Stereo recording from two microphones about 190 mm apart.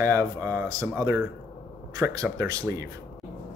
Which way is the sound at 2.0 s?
15° right (ahead or behind).